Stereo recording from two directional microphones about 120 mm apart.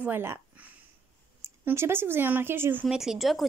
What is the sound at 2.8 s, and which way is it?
Speech, 5° right (ahead or behind).